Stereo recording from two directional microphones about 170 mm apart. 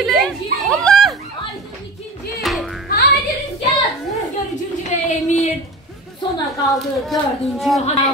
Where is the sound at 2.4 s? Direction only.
Centre (ahead or behind).